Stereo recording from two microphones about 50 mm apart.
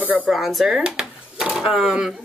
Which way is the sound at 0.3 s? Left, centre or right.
Centre.